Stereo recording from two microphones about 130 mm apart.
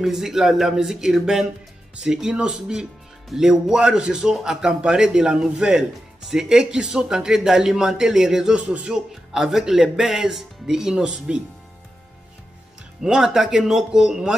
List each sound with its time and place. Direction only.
0.0 s speech: centre (ahead or behind)
13.0 s speech: 5° right (ahead or behind)